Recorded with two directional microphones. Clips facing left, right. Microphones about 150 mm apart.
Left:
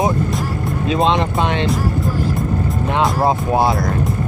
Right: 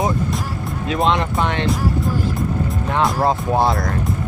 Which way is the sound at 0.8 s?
20° left (ahead or behind).